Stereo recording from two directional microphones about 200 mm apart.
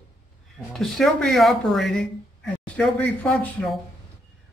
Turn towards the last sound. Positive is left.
turn(degrees=5)  # may be behind; listen again after turning